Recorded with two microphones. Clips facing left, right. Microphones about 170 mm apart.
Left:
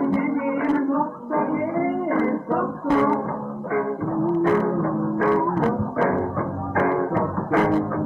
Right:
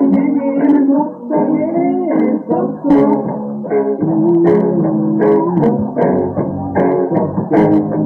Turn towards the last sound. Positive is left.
turn(degrees=-35)  # may be behind; listen again after turning